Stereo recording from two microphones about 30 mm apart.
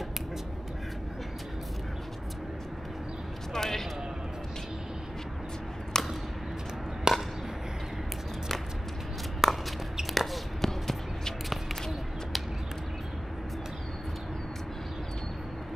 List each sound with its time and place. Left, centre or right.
3.5 s speech: centre
5.9 s a sound: centre
7.1 s chop: right
9.4 s walk: centre
10.1 s basketball bounce: centre